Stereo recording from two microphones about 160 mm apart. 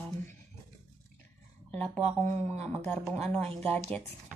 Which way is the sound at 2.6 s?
5° left (ahead or behind).